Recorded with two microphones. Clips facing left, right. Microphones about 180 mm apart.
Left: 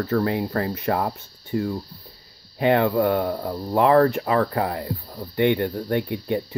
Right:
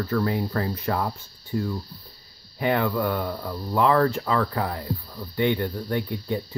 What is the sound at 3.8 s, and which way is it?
Speech, 45° left (ahead or behind).